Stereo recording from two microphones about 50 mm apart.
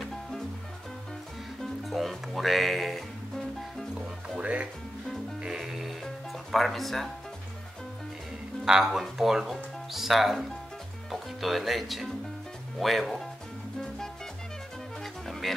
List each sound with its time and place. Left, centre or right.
0.0 s music: centre
1.6 s music: centre
4.4 s music: right
5.6 s music: centre
8.6 s speech: centre
13.7 s music: centre
15.2 s music: centre